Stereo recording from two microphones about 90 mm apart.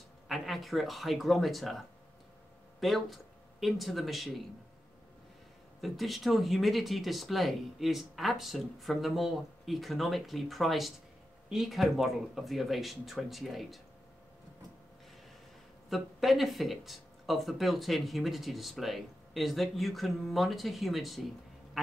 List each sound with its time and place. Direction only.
0.3 s speech: centre (ahead or behind)
5.8 s speech: centre (ahead or behind)
15.9 s speech: centre (ahead or behind)